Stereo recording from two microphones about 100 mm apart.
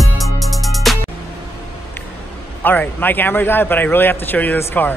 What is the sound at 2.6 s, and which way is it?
A man's voice, 20° left (ahead or behind).